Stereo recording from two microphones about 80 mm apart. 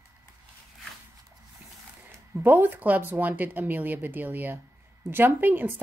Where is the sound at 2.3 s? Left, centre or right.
Right.